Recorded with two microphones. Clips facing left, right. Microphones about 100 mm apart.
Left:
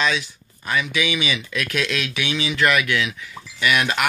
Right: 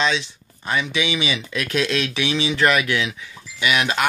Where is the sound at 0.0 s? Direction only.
25° right (ahead or behind).